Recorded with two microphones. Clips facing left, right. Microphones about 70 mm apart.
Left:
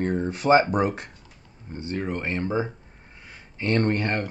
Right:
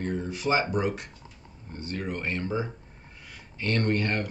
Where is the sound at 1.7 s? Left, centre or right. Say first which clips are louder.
Left 4 dB; left.